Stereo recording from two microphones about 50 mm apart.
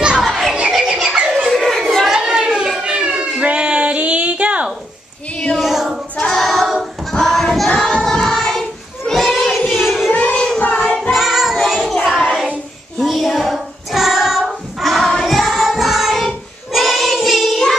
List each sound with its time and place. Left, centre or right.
0.2 s music: centre
1.0 s music: centre
1.5 s chatter: centre
2.0 s a sound: centre
5.6 s child singing: centre
6.1 s singing: centre
6.4 s choir: centre
7.8 s child singing: centre
10.3 s child singing: centre
10.6 s child singing: left
11.0 s singing: centre
12.2 s child singing: centre
16.7 s singing: centre